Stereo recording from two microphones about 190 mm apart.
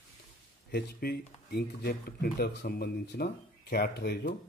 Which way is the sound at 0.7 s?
55° left (ahead or behind).